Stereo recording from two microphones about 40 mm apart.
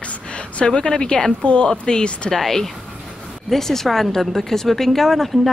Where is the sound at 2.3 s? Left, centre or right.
Centre.